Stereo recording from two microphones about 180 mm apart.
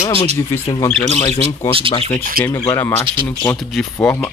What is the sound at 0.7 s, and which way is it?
Speech, 35° left (ahead or behind).